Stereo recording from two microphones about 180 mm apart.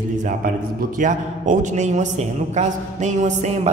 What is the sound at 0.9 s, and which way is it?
A woman's voice, 45° right (ahead or behind).